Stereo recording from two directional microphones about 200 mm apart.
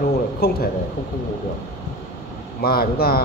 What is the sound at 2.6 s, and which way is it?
Speech, 50° left (ahead or behind).